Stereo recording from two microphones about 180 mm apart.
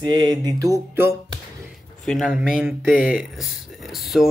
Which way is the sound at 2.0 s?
Centre (ahead or behind).